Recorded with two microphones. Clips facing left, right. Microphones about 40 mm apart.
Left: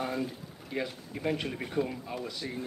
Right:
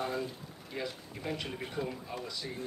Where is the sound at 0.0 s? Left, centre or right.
Centre.